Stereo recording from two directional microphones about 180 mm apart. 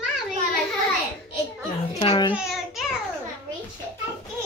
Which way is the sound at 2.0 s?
30° left (ahead or behind).